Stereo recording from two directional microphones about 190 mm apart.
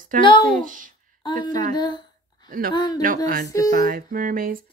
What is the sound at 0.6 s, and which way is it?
Speech, 45° right (ahead or behind).